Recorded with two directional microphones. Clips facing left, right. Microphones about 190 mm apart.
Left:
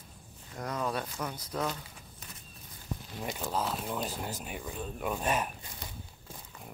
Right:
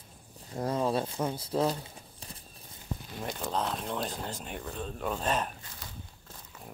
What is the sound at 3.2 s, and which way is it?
Speech, 5° left (ahead or behind).